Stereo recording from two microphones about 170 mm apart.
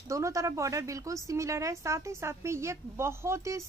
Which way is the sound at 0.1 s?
20° right (ahead or behind).